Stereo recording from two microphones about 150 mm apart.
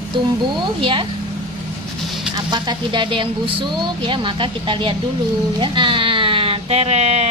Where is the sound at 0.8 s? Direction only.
35° right (ahead or behind).